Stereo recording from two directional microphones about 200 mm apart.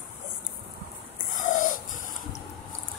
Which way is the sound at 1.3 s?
40° left (ahead or behind).